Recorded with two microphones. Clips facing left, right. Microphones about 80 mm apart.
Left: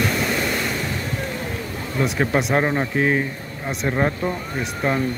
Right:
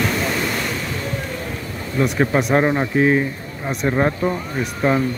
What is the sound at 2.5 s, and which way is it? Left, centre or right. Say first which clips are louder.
Speech: right 3 dB; centre.